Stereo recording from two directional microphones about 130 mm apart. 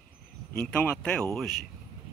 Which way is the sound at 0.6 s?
10° left (ahead or behind).